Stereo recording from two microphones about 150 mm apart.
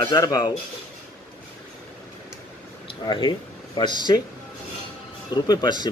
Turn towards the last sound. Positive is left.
turn(degrees=30)  # may be behind; listen again after turning